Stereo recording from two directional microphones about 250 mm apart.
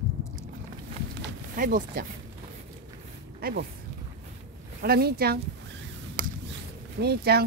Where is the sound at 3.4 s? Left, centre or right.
Right.